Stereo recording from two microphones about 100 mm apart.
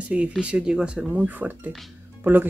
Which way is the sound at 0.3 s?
10° right (ahead or behind).